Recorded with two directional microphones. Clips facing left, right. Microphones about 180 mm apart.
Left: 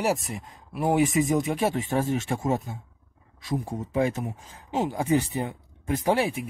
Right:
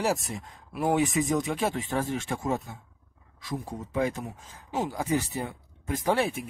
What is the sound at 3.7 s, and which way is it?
Speech, 25° left (ahead or behind).